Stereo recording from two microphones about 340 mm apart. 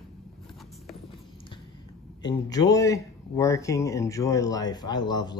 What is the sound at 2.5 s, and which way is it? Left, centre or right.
Speech, centre.